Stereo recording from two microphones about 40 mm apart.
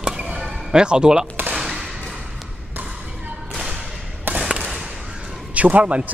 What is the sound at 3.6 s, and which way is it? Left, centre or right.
Whip, centre.